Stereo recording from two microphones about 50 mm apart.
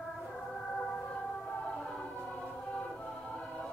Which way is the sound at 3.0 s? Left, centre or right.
Left.